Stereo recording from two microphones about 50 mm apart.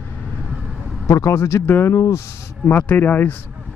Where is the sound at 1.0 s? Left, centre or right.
Left.